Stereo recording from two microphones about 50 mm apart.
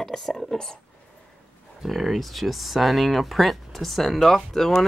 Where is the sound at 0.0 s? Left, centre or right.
Centre.